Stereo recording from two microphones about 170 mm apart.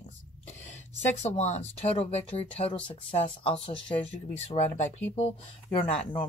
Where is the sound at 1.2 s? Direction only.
40° left (ahead or behind).